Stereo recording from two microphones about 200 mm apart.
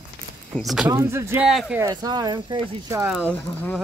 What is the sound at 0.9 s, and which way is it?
Speech, 15° right (ahead or behind).